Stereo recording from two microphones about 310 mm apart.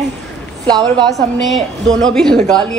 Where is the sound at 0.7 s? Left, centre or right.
Centre.